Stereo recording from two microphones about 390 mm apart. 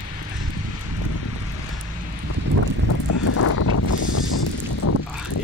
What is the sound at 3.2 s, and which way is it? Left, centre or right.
Wind, left.